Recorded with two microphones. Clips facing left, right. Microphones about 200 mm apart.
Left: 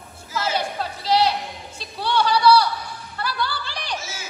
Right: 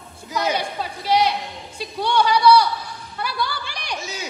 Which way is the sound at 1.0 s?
10° right (ahead or behind).